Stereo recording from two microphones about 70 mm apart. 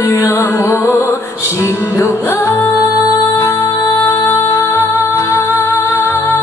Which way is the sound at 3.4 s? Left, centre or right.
Left.